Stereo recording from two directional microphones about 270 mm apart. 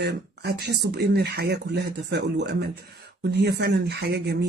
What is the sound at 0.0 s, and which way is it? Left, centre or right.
Speech, right.